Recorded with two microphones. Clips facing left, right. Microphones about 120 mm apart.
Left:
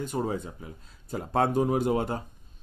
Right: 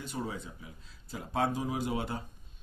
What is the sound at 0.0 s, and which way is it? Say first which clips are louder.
Speech: left 8 dB; 45° left (ahead or behind).